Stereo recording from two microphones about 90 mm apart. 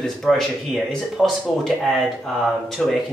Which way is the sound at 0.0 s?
5° left (ahead or behind).